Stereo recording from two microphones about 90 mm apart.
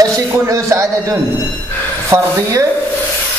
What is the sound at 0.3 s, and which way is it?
A man's voice, 35° right (ahead or behind).